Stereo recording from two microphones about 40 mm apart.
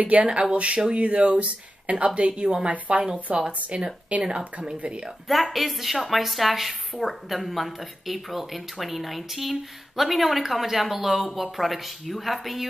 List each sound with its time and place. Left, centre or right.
0.0 s a woman's voice: right
5.3 s a woman's voice: centre